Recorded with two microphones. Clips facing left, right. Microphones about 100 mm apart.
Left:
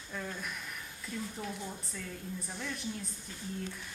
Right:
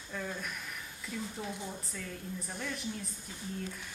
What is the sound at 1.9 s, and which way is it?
A woman's voice, centre (ahead or behind).